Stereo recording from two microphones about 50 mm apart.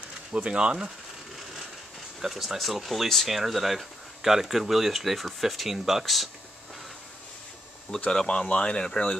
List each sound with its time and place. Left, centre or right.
0.3 s speech: centre
2.2 s speech: centre
8.1 s speech: centre